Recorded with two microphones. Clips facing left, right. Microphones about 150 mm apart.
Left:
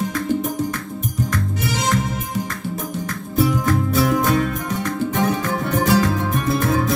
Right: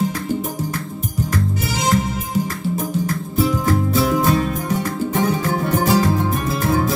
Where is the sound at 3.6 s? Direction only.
30° right (ahead or behind).